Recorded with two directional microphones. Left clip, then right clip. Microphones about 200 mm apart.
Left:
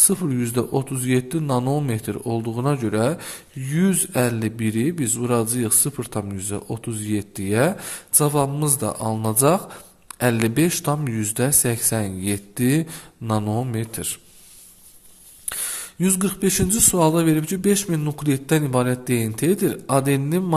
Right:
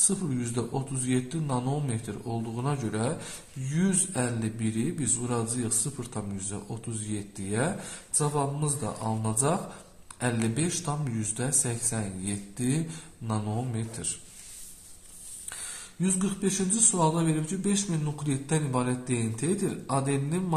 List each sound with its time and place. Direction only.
0.0 s speech: 40° left (ahead or behind)
15.5 s speech: 50° left (ahead or behind)